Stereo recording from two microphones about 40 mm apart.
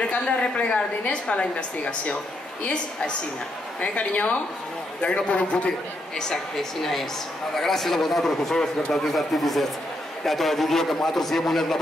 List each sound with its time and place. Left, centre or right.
0.0 s a woman's voice: left
3.8 s a woman's voice: left
6.1 s a man's voice: centre